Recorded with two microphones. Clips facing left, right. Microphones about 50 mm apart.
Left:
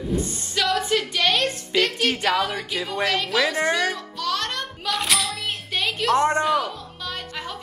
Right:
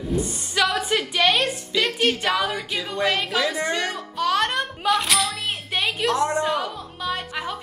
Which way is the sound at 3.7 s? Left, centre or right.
Right.